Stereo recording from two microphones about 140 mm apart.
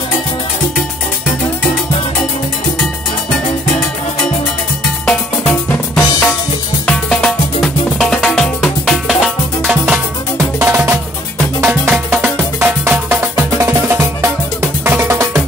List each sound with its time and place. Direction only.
5.0 s drum kit: 10° left (ahead or behind)
6.9 s music: 5° left (ahead or behind)
10.3 s music: 15° right (ahead or behind)